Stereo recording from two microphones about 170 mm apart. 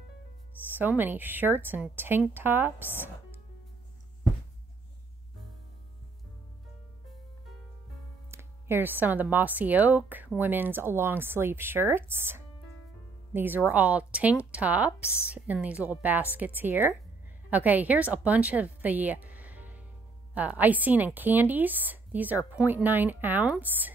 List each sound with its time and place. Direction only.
0.7 s speech: 10° right (ahead or behind)
8.3 s speech: 15° right (ahead or behind)